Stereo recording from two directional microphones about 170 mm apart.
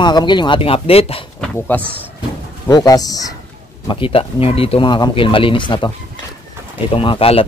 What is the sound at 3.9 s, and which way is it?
Speech, 30° left (ahead or behind).